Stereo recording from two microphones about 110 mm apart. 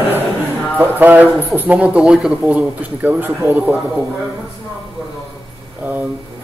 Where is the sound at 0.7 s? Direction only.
15° right (ahead or behind).